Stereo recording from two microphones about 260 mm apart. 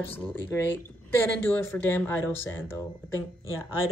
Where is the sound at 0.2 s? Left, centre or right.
Centre.